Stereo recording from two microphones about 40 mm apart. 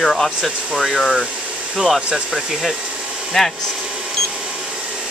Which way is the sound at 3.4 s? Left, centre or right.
Centre.